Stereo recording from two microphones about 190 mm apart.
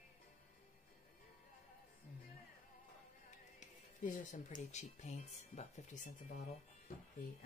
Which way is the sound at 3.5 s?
40° left (ahead or behind).